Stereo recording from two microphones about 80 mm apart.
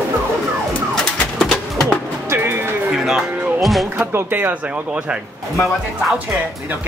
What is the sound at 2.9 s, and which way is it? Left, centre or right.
Music, centre.